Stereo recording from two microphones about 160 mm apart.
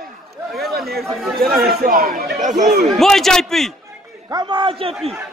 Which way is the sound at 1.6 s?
70° right (ahead or behind).